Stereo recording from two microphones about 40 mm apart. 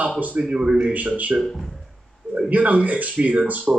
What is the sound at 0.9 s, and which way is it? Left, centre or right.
Speech, right.